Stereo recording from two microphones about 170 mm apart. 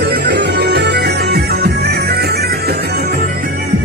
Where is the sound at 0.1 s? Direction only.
70° right (ahead or behind).